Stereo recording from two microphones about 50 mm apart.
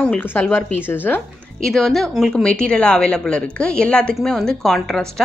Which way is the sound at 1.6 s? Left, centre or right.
Centre.